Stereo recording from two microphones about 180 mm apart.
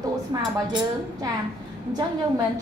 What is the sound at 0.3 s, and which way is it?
Speech, 20° right (ahead or behind).